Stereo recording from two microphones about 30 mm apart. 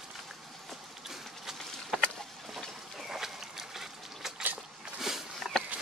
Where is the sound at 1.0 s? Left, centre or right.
Centre.